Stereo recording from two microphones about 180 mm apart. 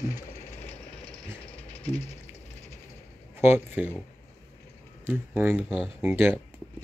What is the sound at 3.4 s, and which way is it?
Speech, 10° right (ahead or behind).